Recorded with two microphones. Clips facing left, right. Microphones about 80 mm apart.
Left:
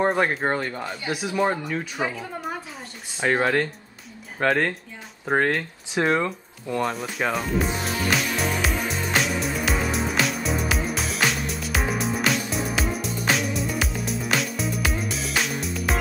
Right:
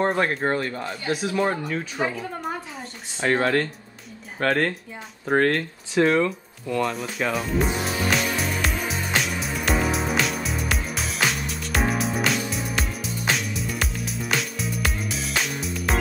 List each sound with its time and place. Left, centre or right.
0.0 s speech: centre
1.5 s speech: centre
3.2 s speech: centre
6.1 s speech: left
6.9 s music: centre